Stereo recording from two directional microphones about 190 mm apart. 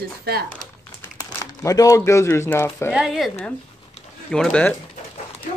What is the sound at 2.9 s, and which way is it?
Speech, centre (ahead or behind).